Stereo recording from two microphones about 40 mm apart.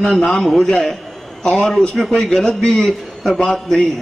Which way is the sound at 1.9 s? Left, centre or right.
Centre.